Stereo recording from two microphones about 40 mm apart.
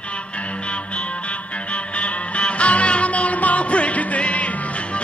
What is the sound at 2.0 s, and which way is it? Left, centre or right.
Music, left.